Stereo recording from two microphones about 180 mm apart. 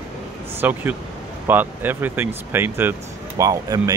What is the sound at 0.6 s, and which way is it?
Speech, 10° right (ahead or behind).